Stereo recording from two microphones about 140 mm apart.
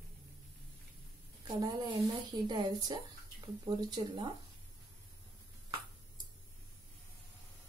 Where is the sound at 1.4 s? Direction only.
30° right (ahead or behind).